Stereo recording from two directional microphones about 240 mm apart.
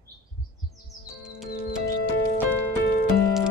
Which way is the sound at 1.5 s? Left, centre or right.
Left.